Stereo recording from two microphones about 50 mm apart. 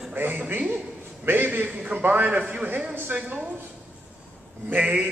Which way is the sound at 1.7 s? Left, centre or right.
Right.